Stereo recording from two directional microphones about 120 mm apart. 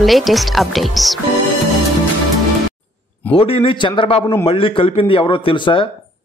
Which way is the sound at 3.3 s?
50° left (ahead or behind).